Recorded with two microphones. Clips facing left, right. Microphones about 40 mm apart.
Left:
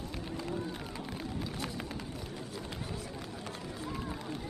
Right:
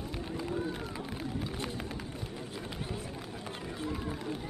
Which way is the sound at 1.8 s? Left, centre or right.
Centre.